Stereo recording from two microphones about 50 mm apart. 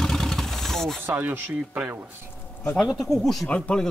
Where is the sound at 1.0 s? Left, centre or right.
Right.